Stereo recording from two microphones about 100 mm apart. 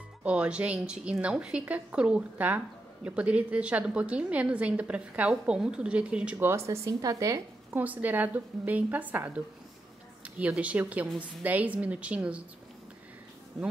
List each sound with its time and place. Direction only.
0.2 s a woman's voice: 15° right (ahead or behind)
6.4 s speech: 30° right (ahead or behind)
7.7 s a woman's voice: 15° right (ahead or behind)
13.5 s speech: centre (ahead or behind)